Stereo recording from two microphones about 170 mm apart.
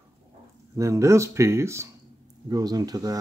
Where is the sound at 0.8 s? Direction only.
15° right (ahead or behind).